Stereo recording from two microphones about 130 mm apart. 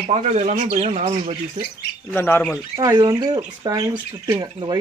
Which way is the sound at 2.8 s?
30° right (ahead or behind).